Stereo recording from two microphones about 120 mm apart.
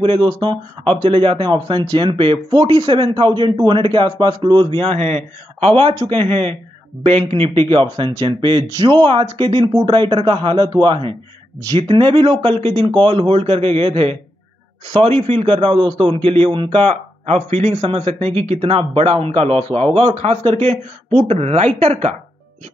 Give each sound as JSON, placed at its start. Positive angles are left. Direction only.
{"t": 0.0, "sound": "a man's voice", "side_deg": -45}